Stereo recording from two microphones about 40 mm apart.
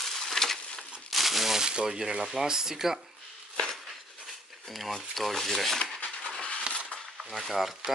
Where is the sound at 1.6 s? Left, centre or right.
Centre.